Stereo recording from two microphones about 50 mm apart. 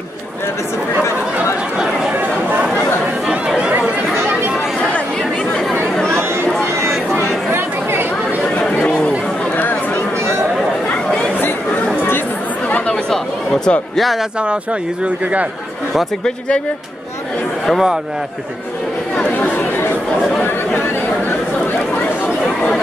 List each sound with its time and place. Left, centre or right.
3.3 s chatter: centre
8.5 s chatter: left
12.6 s chatter: left
13.1 s chatter: centre
16.3 s speech: left